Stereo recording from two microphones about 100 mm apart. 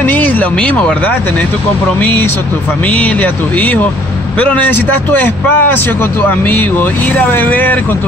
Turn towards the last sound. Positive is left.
turn(degrees=20)  # may be behind; listen again after turning